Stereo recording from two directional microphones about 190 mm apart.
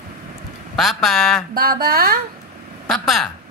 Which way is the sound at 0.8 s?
Centre (ahead or behind).